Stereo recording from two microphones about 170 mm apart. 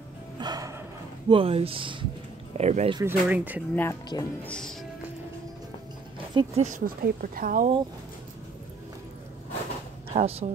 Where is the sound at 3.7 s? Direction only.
10° left (ahead or behind).